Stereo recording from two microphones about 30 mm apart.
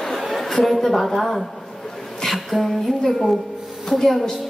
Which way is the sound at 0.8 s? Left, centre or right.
Centre.